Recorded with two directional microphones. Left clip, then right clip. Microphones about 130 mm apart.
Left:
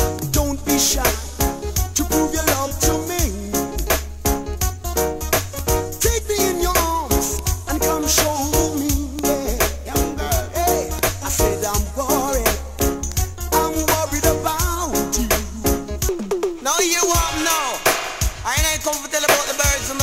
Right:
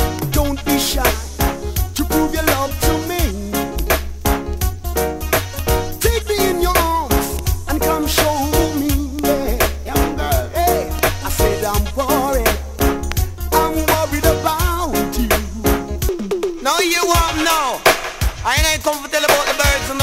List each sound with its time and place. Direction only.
0.7 s music: 20° left (ahead or behind)
12.3 s music: 15° left (ahead or behind)